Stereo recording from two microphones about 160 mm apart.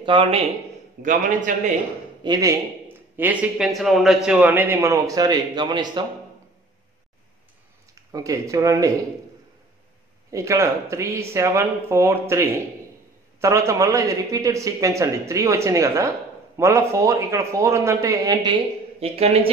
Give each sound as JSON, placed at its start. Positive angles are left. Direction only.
{"t": 0.0, "sound": "speech", "side_deg": -30}
{"t": 1.0, "sound": "a man's voice", "side_deg": -50}
{"t": 2.2, "sound": "a man's voice", "side_deg": -20}
{"t": 7.9, "sound": "speech", "side_deg": -20}
{"t": 10.3, "sound": "a man's voice", "side_deg": -20}
{"t": 18.9, "sound": "speech", "side_deg": -40}